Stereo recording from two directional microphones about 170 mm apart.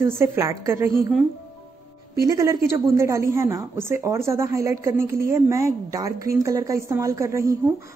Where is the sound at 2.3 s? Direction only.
20° right (ahead or behind).